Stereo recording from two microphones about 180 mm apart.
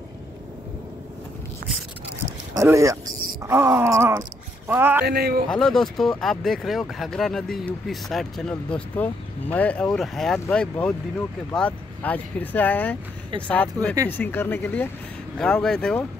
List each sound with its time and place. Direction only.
2.5 s speech: 15° right (ahead or behind)
3.4 s groan: 15° right (ahead or behind)
5.0 s speech: 60° right (ahead or behind)
5.5 s speech: 5° left (ahead or behind)